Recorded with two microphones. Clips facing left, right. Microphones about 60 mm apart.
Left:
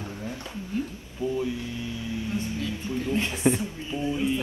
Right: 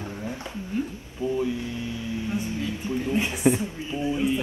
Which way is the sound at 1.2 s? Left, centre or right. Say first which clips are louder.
Right 2 dB; right.